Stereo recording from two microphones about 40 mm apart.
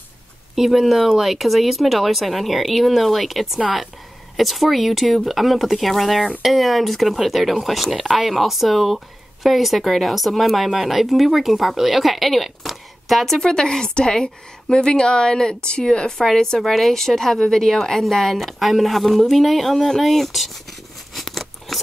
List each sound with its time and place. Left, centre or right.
0.6 s speech: centre
13.4 s a woman's voice: centre
21.1 s biting: centre